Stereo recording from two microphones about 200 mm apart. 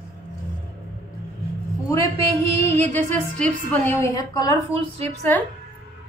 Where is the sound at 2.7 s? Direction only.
10° left (ahead or behind).